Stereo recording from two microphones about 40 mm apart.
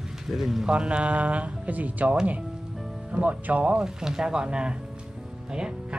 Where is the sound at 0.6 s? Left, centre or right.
Right.